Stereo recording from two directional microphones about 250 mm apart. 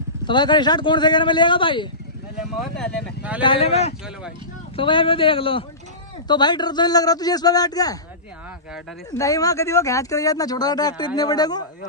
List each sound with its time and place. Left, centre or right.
0.3 s speech: centre
2.8 s speech: centre
3.4 s speech: left
9.1 s speech: centre